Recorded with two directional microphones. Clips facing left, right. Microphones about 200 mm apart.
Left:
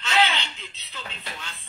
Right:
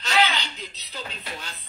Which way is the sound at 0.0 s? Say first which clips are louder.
Even; 40° right (ahead or behind).